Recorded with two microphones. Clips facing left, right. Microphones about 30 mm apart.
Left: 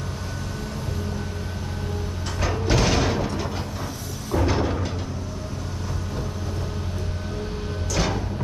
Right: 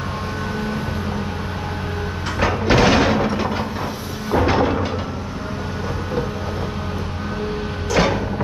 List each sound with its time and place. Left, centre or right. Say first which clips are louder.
2.4 s a sound: right 7 dB; right
4.3 s music: right 6 dB; right
7.9 s printer: right 8 dB; right